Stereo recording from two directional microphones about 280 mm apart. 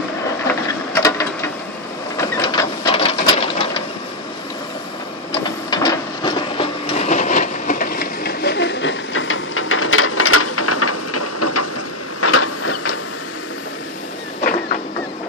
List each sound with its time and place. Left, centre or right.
0.5 s a sound: centre
2.1 s printer: centre
5.3 s printer: centre; by 11.6 s left
12.2 s vehicle: left